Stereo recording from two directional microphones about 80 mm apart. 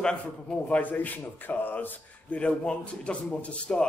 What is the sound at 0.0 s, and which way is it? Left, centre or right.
A man's voice, centre.